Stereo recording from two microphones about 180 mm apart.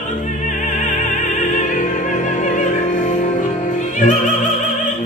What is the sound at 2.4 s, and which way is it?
Music, 45° left (ahead or behind).